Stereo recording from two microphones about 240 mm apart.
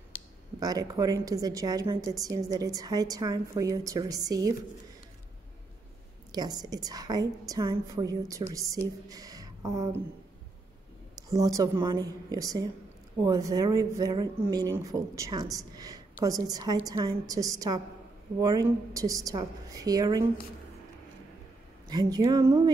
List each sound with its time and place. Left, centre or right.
0.6 s a woman's voice: centre
6.3 s a woman's voice: centre
11.1 s a woman's voice: centre
21.8 s a woman's voice: centre